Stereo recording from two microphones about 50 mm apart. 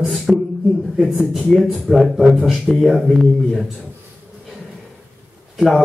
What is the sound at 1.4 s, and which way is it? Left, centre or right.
Speech, centre.